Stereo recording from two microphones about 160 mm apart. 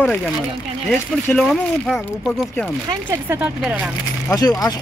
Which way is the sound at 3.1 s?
10° right (ahead or behind).